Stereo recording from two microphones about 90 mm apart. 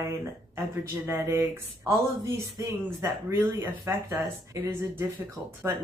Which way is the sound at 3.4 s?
25° right (ahead or behind).